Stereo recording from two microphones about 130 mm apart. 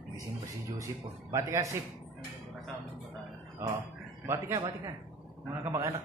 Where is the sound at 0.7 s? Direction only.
25° right (ahead or behind).